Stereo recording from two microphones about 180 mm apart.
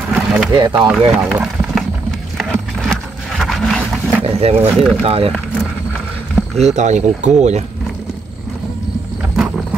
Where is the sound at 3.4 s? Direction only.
Centre (ahead or behind).